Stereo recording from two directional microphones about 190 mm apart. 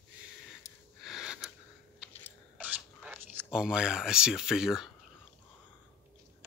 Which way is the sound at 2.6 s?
10° right (ahead or behind).